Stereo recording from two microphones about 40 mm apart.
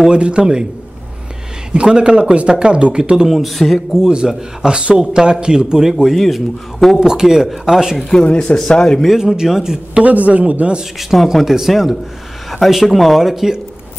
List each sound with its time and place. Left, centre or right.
0.1 s a man's voice: right
1.7 s a man's voice: right
3.3 s speech: centre
4.3 s a man's voice: centre
6.1 s speech: centre
7.0 s speech: centre
8.1 s speech: left
8.5 s speech: centre
9.3 s speech: centre
9.9 s a man's voice: right
11.0 s speech: centre